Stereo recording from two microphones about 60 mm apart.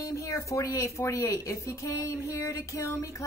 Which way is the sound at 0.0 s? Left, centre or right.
Left.